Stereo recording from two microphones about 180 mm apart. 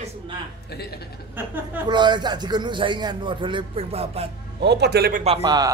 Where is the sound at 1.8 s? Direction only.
25° right (ahead or behind).